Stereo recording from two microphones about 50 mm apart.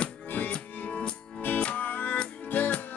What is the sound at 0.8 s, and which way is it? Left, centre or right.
Music, left.